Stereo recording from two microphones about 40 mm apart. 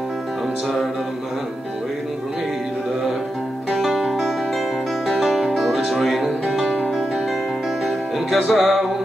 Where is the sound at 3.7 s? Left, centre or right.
Centre.